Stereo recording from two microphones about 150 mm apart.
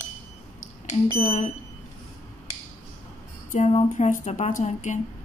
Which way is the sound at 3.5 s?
50° left (ahead or behind).